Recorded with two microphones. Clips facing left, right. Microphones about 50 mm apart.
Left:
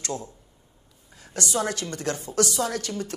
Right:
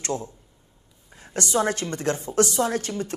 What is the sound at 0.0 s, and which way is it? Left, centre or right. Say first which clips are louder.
Speech: right 3 dB; right.